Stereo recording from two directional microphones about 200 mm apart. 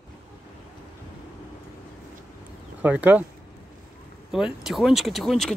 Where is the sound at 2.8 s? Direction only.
10° right (ahead or behind).